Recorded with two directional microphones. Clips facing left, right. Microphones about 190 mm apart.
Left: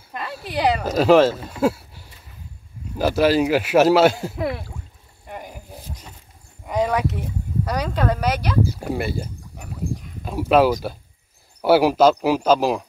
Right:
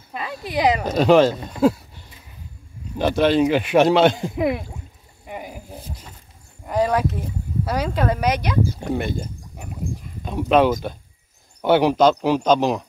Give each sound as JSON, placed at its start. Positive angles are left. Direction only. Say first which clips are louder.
{"t": 0.5, "sound": "speech", "louder": "right 1 dB", "side_deg": -10}
{"t": 0.8, "sound": "speech", "louder": "left 1 dB", "side_deg": 0}
{"t": 4.4, "sound": "speech", "louder": "right 4 dB", "side_deg": -15}
{"t": 5.2, "sound": "a sound", "louder": "right 2 dB", "side_deg": -5}
{"t": 6.6, "sound": "speech", "louder": "right 1 dB", "side_deg": 0}
{"t": 8.7, "sound": "speech", "louder": "right 1 dB", "side_deg": 5}